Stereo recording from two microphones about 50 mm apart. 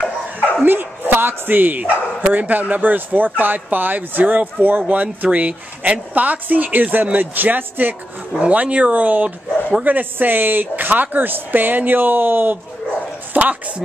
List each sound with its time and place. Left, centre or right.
0.7 s speech: right
8.4 s speech: right
13.3 s speech: right